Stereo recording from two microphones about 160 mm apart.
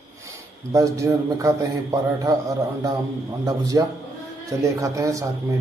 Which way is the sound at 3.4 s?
20° right (ahead or behind).